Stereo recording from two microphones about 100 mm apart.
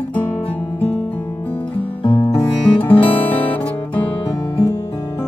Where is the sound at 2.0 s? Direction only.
60° left (ahead or behind).